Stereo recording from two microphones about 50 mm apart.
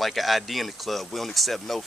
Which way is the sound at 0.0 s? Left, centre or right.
Centre.